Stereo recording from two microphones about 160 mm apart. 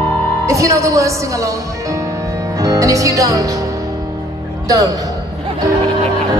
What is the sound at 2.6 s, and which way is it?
Music, 20° right (ahead or behind).